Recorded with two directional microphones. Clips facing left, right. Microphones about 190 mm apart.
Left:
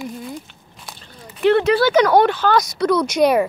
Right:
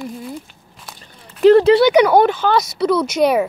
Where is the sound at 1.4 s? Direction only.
35° right (ahead or behind).